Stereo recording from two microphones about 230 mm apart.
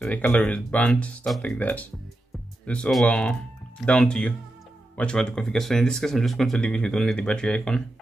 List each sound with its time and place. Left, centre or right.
0.0 s speech: centre